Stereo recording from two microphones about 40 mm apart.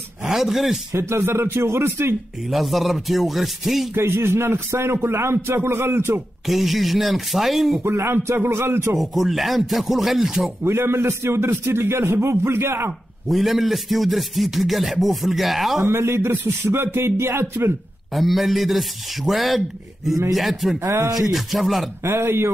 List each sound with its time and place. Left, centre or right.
0.2 s speech: centre
1.0 s a man's voice: right
2.5 s speech: centre
3.9 s a man's voice: right
6.4 s speech: centre
7.8 s speech: right
8.9 s speech: centre
10.6 s a man's voice: right
13.3 s speech: centre
15.8 s a man's voice: right
18.1 s speech: centre
22.1 s a man's voice: right